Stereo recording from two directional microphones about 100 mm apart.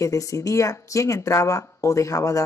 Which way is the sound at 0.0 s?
35° left (ahead or behind).